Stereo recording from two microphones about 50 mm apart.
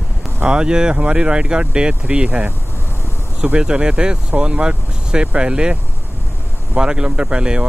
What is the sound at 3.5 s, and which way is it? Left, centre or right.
Speech, centre.